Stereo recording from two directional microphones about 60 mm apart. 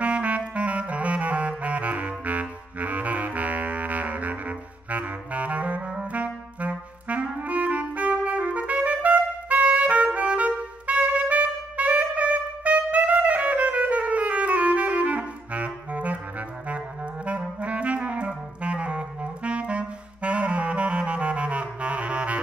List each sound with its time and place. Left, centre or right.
0.0 s saxophone: right